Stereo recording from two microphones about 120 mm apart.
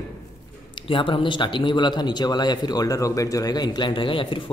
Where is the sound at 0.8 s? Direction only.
45° left (ahead or behind).